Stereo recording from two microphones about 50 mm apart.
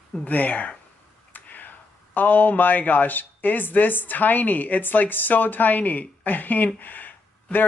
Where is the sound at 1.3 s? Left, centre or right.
Left.